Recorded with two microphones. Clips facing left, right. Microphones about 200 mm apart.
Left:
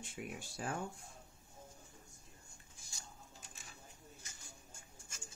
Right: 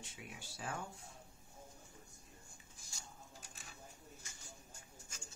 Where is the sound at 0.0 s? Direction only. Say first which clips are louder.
Left 7 dB; 50° left (ahead or behind).